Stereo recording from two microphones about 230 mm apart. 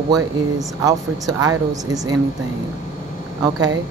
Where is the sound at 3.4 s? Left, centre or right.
Centre.